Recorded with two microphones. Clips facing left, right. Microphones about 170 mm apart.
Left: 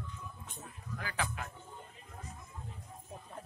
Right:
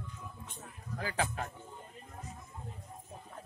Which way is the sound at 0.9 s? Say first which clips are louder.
Right 4 dB; 35° right (ahead or behind).